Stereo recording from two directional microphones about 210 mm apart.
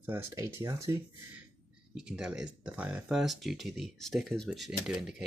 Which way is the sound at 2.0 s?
5° right (ahead or behind).